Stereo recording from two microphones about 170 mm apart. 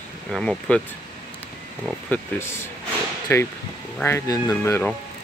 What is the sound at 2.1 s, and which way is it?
Speech, 15° left (ahead or behind).